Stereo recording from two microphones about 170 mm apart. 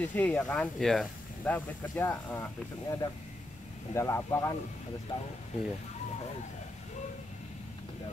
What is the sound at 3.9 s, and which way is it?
Speech, 15° left (ahead or behind).